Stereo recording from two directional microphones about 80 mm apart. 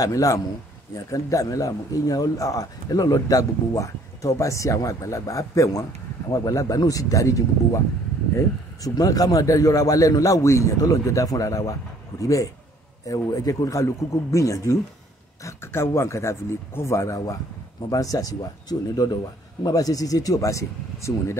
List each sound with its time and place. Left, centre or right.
0.0 s a man's voice: left
15.4 s a man's voice: left